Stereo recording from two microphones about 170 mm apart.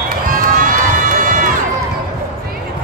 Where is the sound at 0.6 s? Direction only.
50° right (ahead or behind).